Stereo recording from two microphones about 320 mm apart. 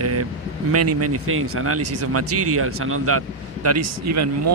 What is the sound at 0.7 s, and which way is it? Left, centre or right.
Speech, right.